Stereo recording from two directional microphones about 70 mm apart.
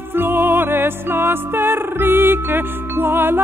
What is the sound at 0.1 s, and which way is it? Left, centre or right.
Music, right.